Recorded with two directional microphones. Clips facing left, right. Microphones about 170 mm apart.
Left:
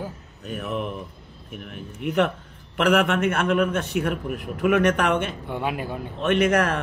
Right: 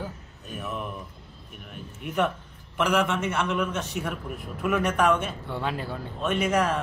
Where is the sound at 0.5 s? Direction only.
70° left (ahead or behind).